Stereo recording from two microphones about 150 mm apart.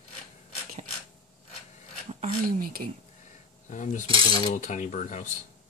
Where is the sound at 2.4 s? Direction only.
75° right (ahead or behind).